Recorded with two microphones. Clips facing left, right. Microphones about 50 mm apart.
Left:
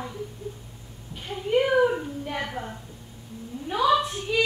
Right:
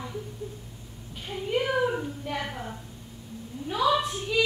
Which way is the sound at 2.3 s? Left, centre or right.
Centre.